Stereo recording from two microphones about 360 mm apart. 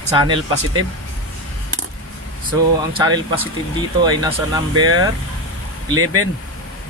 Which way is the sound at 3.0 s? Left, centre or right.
Centre.